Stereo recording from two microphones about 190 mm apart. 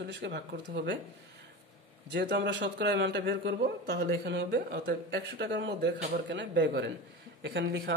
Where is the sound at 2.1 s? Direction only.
65° right (ahead or behind).